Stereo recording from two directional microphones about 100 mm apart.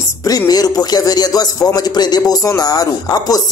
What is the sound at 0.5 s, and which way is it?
A man's voice, 40° left (ahead or behind).